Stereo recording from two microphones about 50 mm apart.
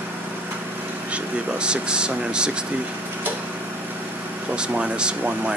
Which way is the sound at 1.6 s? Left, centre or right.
Centre.